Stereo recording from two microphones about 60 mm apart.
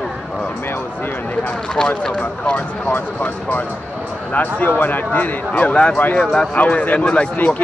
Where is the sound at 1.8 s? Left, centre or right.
Centre.